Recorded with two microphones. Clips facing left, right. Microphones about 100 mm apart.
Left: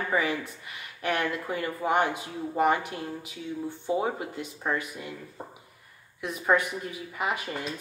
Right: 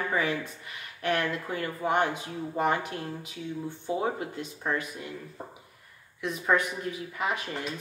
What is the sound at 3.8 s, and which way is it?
A woman's voice, 15° left (ahead or behind).